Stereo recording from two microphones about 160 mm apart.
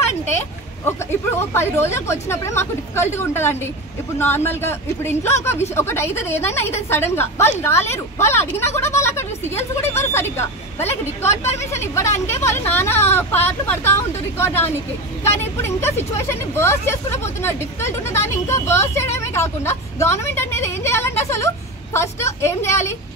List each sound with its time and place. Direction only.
1.4 s speech: 15° left (ahead or behind)